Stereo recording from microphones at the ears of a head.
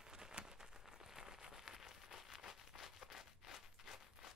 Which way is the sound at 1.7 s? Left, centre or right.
Left.